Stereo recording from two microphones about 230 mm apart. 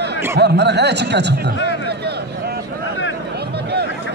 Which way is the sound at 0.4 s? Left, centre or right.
Right.